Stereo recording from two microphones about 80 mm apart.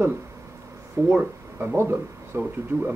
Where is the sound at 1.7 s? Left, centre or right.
Right.